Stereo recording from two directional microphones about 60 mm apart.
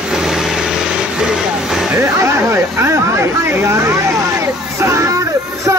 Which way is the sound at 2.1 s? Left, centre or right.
Right.